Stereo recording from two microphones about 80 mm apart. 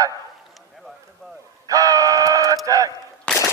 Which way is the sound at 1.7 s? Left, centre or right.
Right.